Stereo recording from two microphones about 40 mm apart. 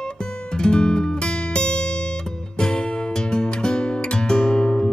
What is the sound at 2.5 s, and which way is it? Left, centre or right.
Music, centre.